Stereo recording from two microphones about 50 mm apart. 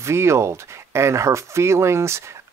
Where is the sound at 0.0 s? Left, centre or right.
Right.